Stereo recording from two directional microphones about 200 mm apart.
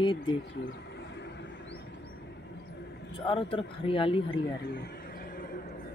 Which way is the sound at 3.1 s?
25° left (ahead or behind).